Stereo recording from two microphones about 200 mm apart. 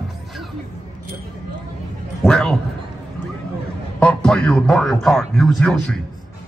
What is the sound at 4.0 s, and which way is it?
A man's voice, 5° left (ahead or behind).